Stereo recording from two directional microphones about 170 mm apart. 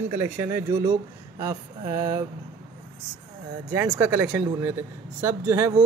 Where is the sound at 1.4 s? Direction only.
15° right (ahead or behind).